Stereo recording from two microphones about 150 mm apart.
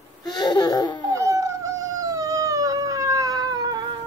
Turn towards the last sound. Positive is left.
turn(degrees=-25)  # may be behind; listen again after turning